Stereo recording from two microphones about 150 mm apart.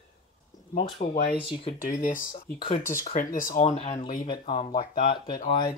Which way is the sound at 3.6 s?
45° left (ahead or behind).